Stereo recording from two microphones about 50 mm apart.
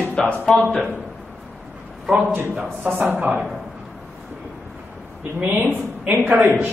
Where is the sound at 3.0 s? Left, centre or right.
Right.